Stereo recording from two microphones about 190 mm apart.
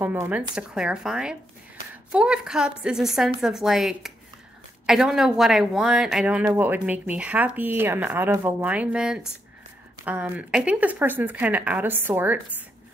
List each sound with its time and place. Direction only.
0.0 s a woman's voice: 10° right (ahead or behind)